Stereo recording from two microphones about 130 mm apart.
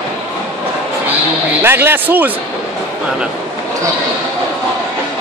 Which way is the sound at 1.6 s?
15° right (ahead or behind).